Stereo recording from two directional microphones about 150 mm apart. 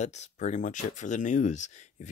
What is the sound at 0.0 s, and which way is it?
Speech, 50° left (ahead or behind).